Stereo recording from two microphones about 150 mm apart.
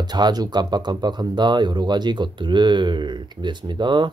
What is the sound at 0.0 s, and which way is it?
Speech, 30° right (ahead or behind).